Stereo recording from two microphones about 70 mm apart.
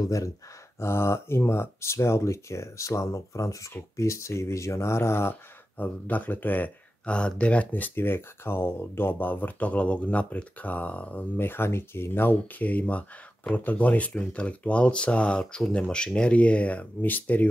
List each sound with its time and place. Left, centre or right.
0.0 s speech: left
0.7 s speech: left
7.2 s speech: centre
11.3 s speech: left